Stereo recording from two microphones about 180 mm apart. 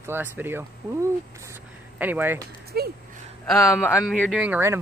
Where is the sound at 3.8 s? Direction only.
15° left (ahead or behind).